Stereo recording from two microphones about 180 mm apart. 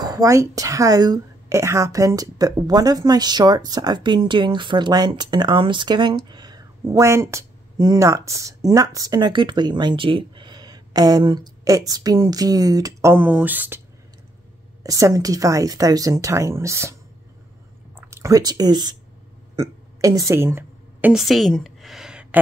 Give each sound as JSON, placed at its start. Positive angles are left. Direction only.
{"t": 0.0, "sound": "a woman's voice", "side_deg": -20}
{"t": 14.8, "sound": "speech", "side_deg": -20}
{"t": 17.9, "sound": "speech", "side_deg": -15}
{"t": 19.5, "sound": "burping", "side_deg": -20}